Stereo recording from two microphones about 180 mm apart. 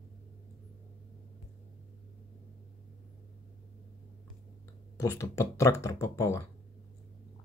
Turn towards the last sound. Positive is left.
turn(degrees=15)  # may be behind; listen again after turning